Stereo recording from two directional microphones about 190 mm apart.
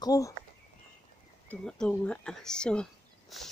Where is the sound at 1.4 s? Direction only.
5° left (ahead or behind).